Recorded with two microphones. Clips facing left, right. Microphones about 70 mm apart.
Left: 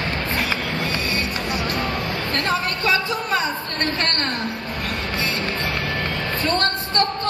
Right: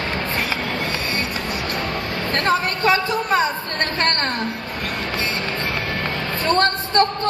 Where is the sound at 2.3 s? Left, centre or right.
Right.